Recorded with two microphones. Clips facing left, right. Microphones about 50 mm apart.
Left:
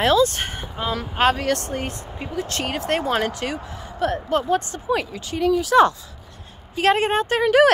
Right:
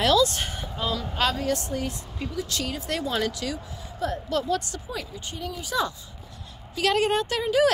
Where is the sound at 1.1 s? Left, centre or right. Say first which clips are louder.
Left 8 dB; left.